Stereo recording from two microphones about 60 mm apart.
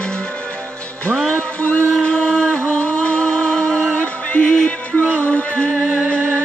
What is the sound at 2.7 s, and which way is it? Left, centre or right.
Music, left.